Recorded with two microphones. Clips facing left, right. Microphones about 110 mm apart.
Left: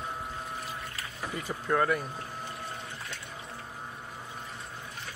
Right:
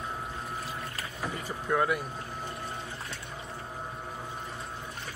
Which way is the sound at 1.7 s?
10° right (ahead or behind).